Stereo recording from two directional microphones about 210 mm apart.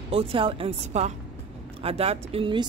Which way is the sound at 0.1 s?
25° right (ahead or behind).